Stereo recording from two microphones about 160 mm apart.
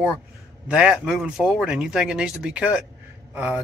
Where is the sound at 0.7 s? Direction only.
5° right (ahead or behind).